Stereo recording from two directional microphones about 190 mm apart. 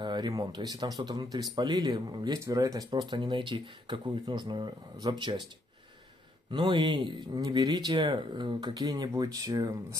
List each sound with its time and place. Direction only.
0.0 s speech: 20° right (ahead or behind)
6.5 s speech: 25° right (ahead or behind)